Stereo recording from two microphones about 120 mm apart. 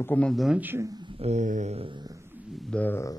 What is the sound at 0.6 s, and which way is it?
Speech, 15° right (ahead or behind).